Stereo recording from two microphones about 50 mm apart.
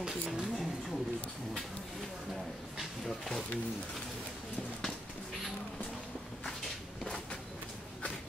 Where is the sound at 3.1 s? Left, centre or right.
Centre.